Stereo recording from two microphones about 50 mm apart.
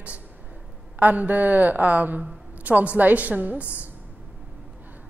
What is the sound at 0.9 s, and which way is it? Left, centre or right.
A man's voice, right.